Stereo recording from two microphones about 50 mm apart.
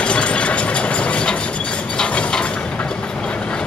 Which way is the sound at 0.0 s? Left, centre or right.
Left.